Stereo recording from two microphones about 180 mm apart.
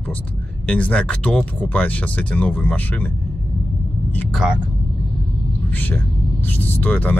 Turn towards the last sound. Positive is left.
turn(degrees=10)  # may be behind; listen again after turning